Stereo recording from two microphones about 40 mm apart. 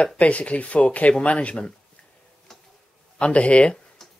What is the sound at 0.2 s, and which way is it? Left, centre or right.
Speech, left.